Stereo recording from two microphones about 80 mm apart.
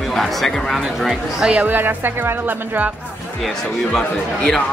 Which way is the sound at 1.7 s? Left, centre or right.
Right.